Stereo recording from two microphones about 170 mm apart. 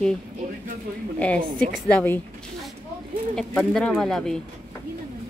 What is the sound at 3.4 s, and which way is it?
A woman's voice, 5° left (ahead or behind).